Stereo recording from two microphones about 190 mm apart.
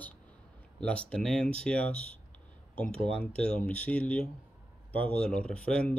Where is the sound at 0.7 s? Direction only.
5° left (ahead or behind).